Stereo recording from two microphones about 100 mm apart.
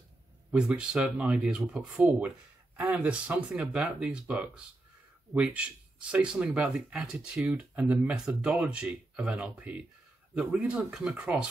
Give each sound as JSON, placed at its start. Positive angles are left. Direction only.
{"t": 0.5, "sound": "speech", "side_deg": -10}